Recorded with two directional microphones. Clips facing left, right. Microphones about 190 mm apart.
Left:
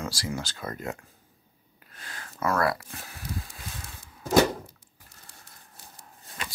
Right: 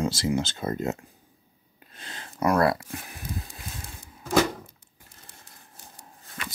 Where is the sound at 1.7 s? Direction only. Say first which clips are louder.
Right 2 dB; 25° right (ahead or behind).